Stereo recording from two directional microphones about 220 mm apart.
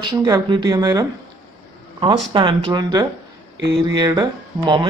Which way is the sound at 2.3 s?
20° right (ahead or behind).